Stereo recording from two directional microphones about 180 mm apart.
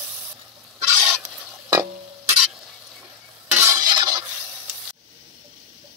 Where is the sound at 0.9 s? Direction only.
5° right (ahead or behind).